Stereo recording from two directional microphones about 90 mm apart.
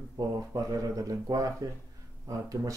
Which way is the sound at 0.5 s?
40° right (ahead or behind).